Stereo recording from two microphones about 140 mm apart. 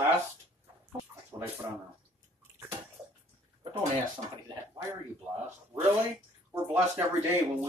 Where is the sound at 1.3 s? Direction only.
20° right (ahead or behind).